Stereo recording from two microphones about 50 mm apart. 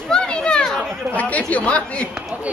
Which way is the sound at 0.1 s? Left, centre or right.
Centre.